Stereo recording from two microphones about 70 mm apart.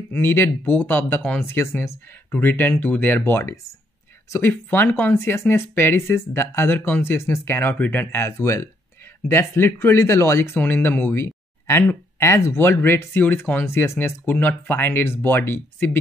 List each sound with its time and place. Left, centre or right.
0.1 s speech: left
7.7 s speech: left
10.6 s speech: left